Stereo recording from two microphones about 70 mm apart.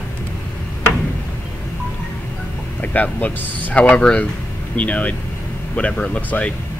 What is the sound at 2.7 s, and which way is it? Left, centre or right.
Speech, left.